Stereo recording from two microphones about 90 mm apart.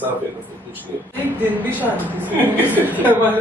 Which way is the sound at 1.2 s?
20° right (ahead or behind).